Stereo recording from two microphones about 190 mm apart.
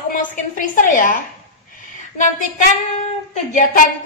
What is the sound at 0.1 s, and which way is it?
A woman's voice, 45° left (ahead or behind).